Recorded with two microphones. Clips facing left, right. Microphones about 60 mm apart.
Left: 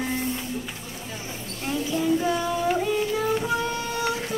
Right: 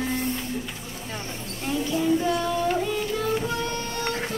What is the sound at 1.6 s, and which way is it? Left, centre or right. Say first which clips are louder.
Child singing: right 1 dB; centre.